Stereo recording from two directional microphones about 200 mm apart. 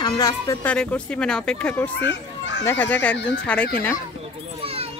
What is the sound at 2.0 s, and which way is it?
Speech, 60° left (ahead or behind).